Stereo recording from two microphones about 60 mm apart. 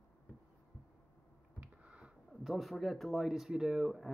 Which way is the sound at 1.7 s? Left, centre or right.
Centre.